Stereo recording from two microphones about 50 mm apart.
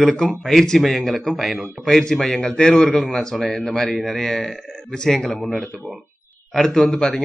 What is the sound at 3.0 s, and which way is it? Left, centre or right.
A man's voice, centre.